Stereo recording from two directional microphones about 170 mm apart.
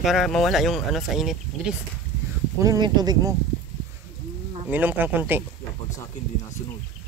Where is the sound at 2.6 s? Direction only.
25° right (ahead or behind).